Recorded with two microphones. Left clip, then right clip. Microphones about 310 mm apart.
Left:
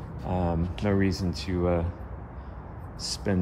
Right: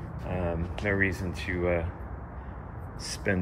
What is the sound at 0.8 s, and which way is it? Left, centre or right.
Speech, centre.